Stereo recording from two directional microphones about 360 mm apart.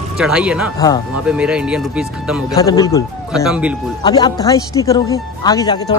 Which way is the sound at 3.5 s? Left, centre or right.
Centre.